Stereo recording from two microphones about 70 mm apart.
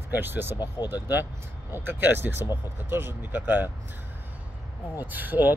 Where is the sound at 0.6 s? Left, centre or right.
Left.